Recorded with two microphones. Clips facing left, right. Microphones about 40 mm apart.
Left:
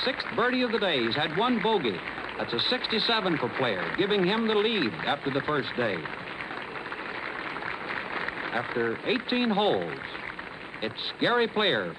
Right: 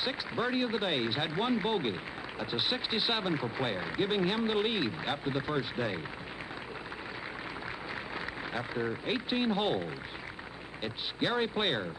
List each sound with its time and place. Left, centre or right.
0.0 s speech: left
7.9 s speech: left